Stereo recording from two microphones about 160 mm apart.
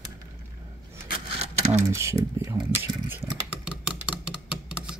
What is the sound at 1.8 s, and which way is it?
Speech, 20° right (ahead or behind).